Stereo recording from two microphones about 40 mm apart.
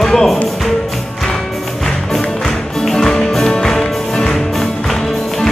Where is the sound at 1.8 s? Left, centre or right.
Centre.